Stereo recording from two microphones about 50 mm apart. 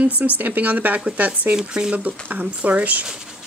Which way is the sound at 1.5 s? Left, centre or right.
Centre.